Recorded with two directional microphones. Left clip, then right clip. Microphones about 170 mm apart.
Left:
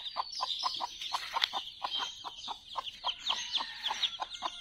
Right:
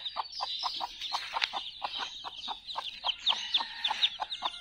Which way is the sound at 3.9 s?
5° right (ahead or behind).